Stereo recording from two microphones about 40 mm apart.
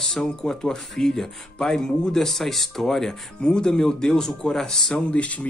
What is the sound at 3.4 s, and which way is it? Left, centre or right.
Speech, left.